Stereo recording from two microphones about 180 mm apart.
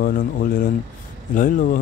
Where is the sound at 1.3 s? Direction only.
50° left (ahead or behind).